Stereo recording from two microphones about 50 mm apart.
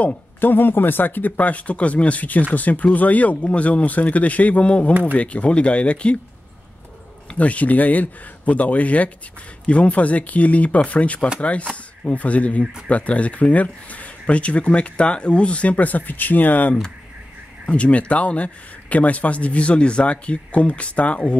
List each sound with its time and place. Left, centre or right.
0.4 s speech: left
7.2 s speech: left